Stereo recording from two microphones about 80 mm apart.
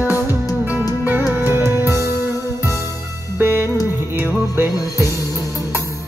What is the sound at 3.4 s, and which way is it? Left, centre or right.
Music, right.